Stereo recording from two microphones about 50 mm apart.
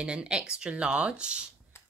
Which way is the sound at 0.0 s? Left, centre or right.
Right.